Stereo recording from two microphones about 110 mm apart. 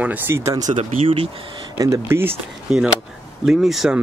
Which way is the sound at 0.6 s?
90° right.